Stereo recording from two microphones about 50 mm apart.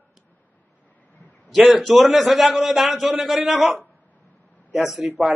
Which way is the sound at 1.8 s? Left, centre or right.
Centre.